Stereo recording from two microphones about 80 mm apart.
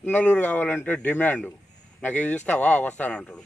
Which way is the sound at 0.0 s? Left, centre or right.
Centre.